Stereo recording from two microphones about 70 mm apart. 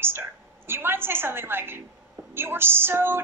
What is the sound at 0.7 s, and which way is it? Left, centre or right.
Speech, right.